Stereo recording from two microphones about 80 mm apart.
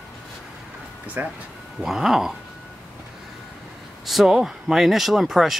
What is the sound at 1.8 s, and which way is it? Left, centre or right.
Speech, centre.